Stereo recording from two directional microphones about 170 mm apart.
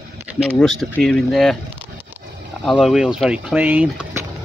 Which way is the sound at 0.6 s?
Centre (ahead or behind).